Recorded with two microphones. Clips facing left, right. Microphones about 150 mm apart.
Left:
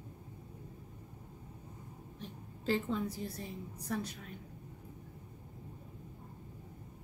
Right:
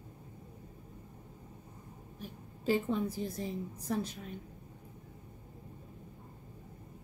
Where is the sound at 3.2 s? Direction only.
30° right (ahead or behind).